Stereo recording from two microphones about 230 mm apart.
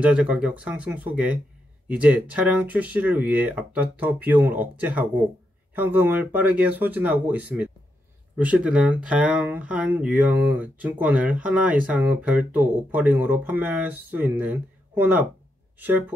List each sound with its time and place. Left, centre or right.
0.0 s speech: centre